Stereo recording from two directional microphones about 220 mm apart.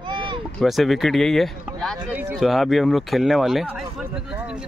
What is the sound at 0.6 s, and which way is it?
Speech, centre (ahead or behind).